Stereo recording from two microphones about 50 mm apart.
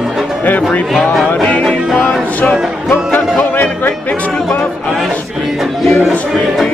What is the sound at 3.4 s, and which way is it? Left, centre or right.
Music, left.